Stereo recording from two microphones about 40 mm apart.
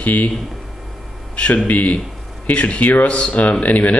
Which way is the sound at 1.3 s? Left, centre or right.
Left.